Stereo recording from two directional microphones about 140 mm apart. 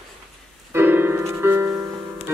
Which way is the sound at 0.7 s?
15° right (ahead or behind).